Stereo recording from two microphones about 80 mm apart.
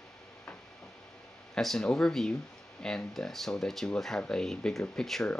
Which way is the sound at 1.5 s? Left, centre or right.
Centre.